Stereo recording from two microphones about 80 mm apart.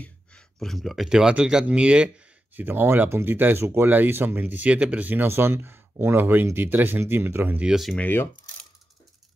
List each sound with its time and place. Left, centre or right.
0.6 s speech: centre
2.5 s speech: right
7.5 s speech: centre
7.9 s speech: centre